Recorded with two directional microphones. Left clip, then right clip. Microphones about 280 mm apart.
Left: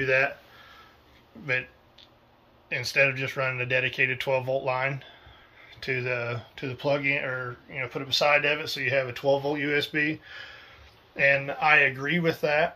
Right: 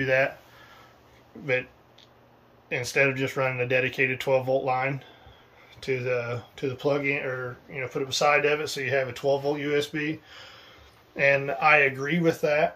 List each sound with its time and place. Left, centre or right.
0.0 s speech: centre
2.7 s speech: centre